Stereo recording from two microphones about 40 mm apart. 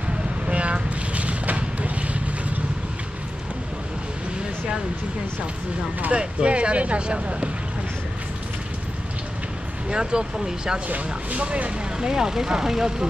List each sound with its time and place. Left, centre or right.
0.5 s vehicle: right
6.1 s speech: right
9.8 s speech: right
10.9 s speech: right
12.0 s speech: centre